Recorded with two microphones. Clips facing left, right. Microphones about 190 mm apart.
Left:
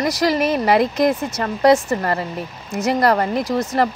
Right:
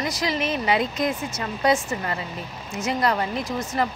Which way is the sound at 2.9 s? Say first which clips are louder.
Left 6 dB; 70° left (ahead or behind).